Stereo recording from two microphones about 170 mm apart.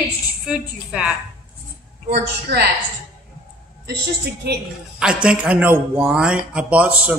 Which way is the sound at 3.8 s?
70° right (ahead or behind).